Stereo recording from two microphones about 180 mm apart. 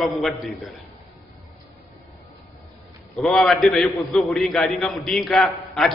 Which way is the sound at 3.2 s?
Centre (ahead or behind).